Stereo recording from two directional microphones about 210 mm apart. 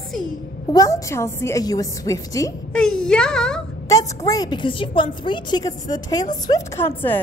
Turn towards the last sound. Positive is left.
turn(degrees=10)  # may be behind; listen again after turning